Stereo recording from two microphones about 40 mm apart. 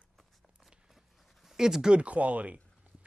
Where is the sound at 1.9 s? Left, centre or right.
Right.